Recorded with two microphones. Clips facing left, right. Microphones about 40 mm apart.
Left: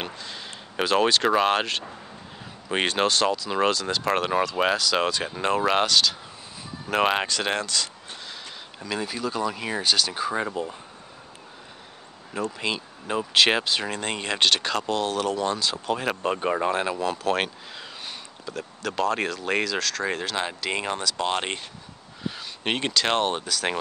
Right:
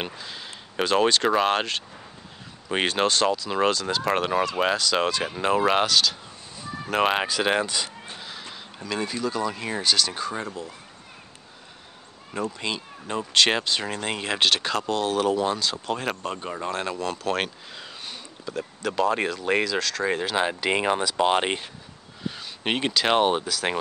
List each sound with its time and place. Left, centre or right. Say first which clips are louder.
0.0 s speech: right 1 dB; centre
8.1 s speech: right 1 dB; centre
10.3 s speech: left 5 dB; left
12.4 s speech: left 1 dB; centre
16.2 s speech: left 6 dB; left
16.6 s speech: left 3 dB; centre
22.2 s speech: even; centre